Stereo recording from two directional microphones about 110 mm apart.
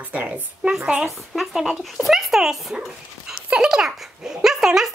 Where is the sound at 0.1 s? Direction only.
10° right (ahead or behind).